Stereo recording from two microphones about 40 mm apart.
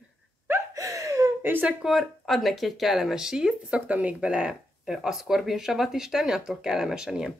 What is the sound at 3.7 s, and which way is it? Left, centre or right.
Speech, right.